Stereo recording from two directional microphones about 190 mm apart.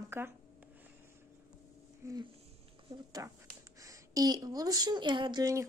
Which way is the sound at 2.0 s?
15° right (ahead or behind).